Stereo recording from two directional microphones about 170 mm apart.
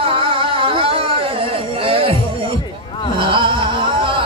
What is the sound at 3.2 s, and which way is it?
Music, 30° right (ahead or behind).